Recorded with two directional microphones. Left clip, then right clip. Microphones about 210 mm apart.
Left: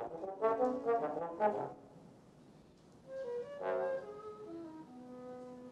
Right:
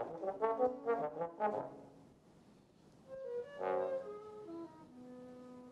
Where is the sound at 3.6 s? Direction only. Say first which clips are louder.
Right 1 dB; 25° right (ahead or behind).